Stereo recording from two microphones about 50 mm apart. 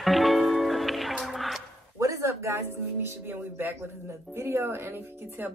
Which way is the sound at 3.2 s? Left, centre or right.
Right.